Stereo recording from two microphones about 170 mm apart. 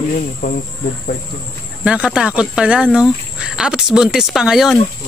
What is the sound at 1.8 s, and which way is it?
Speech, 5° right (ahead or behind).